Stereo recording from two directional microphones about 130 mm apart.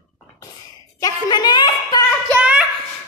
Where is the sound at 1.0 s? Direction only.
30° left (ahead or behind).